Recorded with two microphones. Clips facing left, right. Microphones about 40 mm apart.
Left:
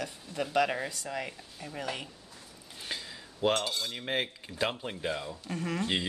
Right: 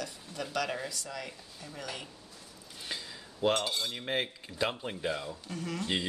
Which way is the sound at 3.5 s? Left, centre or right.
Centre.